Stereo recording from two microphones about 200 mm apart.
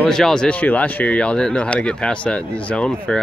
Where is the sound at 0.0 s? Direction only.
5° left (ahead or behind).